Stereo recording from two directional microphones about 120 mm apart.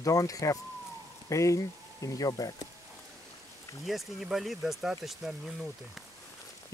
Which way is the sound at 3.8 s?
Centre (ahead or behind).